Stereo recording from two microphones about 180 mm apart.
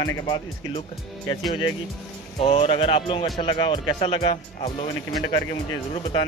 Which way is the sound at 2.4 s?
30° left (ahead or behind).